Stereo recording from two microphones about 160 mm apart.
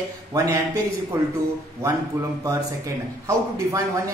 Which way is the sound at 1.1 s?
15° right (ahead or behind).